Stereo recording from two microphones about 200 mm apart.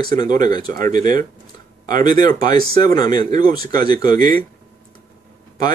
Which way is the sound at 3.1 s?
20° left (ahead or behind).